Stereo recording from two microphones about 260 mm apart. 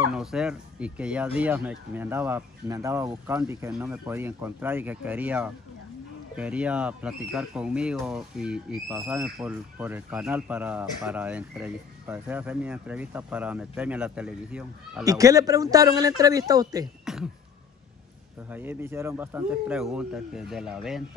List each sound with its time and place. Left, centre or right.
0.1 s speech: centre
17.0 s throat clearing: centre
18.5 s speech: centre